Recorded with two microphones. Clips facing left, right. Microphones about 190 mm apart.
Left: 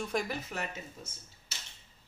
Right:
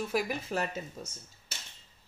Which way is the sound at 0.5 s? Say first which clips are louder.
Right 6 dB; 35° right (ahead or behind).